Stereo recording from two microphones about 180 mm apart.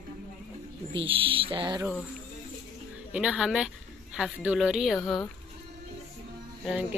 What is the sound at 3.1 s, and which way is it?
Speech, 5° right (ahead or behind).